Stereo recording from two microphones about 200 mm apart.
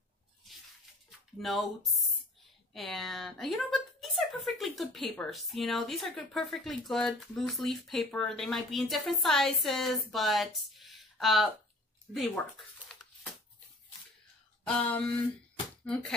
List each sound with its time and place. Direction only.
1.4 s a woman's voice: centre (ahead or behind)
12.1 s a sound: centre (ahead or behind)
15.8 s speech: 5° left (ahead or behind)